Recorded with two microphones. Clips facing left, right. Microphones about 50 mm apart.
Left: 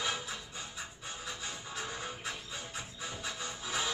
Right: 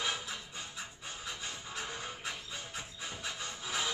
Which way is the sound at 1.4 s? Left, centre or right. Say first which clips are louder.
Left 1 dB; centre.